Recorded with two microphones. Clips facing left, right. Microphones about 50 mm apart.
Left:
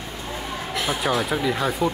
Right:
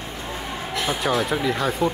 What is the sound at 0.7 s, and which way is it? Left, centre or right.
Speech, centre.